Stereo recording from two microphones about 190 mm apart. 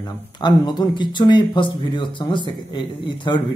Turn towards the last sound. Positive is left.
turn(degrees=25)  # may be behind; listen again after turning